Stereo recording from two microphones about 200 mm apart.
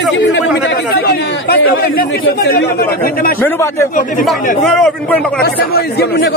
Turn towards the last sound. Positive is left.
turn(degrees=50)  # may be behind; listen again after turning